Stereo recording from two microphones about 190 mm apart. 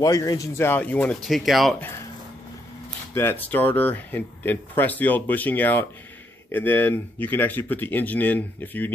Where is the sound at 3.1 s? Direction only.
10° left (ahead or behind).